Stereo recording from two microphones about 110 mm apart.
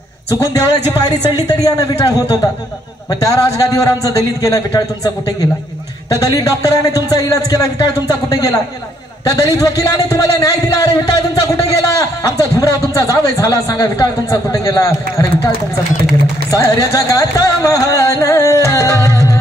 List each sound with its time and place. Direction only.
0.4 s a man's voice: 30° left (ahead or behind)
16.4 s a man's voice: 30° left (ahead or behind)